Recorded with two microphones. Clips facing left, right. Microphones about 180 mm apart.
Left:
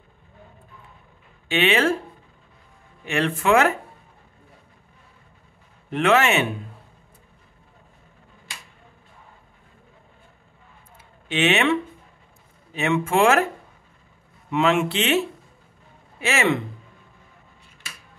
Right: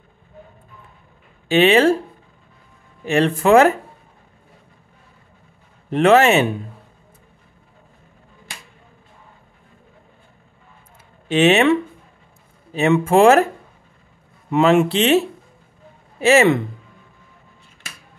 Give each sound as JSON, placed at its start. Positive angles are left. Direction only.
{"t": 1.5, "sound": "speech", "side_deg": -35}
{"t": 3.1, "sound": "speech", "side_deg": -35}
{"t": 5.9, "sound": "speech", "side_deg": -35}
{"t": 11.2, "sound": "speech", "side_deg": -35}
{"t": 14.5, "sound": "speech", "side_deg": -40}